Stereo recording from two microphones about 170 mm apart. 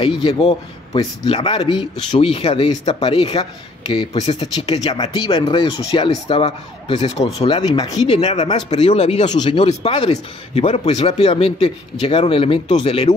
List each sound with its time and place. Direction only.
0.2 s a man's voice: 30° left (ahead or behind)
8.1 s a man's voice: 35° left (ahead or behind)
9.3 s a man's voice: 25° left (ahead or behind)